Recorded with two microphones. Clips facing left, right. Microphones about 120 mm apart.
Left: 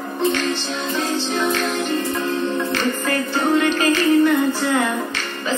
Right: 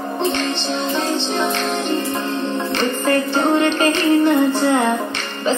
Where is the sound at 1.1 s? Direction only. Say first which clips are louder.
Right 1 dB; 25° right (ahead or behind).